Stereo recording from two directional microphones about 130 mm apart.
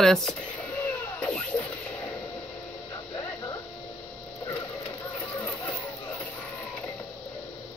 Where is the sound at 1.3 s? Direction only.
10° left (ahead or behind).